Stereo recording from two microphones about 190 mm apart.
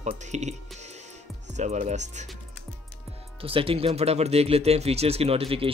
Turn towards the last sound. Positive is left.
turn(degrees=-30)  # may be behind; listen again after turning